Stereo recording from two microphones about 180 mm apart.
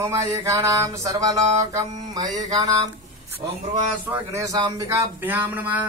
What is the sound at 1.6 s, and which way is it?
Mantra, 20° right (ahead or behind).